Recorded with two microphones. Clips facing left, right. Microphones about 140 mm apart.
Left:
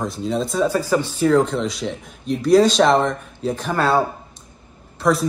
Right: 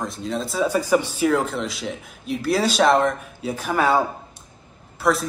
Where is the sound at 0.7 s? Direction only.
15° right (ahead or behind).